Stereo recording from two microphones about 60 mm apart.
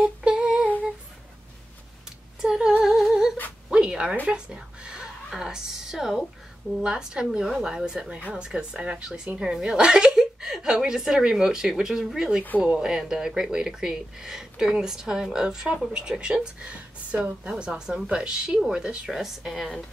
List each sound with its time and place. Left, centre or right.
0.0 s humming: centre
2.4 s female singing: centre
2.8 s humming: centre
3.7 s a sound: centre
4.3 s a woman's voice: centre
19.0 s a woman's voice: centre